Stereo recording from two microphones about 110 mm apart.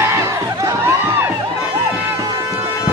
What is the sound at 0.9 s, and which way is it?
Music, 20° right (ahead or behind).